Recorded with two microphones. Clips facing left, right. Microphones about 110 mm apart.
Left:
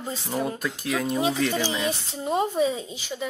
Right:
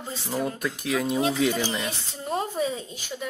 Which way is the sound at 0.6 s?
Centre (ahead or behind).